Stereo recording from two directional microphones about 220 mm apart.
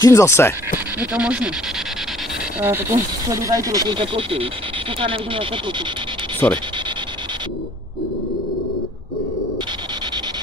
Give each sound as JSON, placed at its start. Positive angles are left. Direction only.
{"t": 0.0, "sound": "speech", "side_deg": 15}
{"t": 1.1, "sound": "speech", "side_deg": -5}
{"t": 2.6, "sound": "speech", "side_deg": -10}
{"t": 6.4, "sound": "speech", "side_deg": 10}